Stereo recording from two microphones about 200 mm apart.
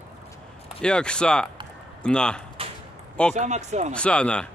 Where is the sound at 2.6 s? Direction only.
30° right (ahead or behind).